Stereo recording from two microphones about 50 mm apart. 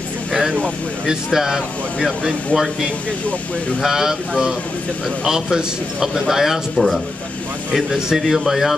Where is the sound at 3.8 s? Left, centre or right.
Centre.